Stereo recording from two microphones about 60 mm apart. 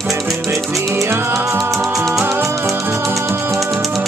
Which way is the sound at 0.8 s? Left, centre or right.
Right.